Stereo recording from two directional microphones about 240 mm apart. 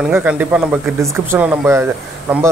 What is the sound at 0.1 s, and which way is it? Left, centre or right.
Speech, centre.